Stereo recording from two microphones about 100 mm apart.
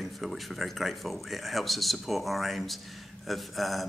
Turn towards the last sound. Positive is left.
turn(degrees=0)  # may be behind; listen again after turning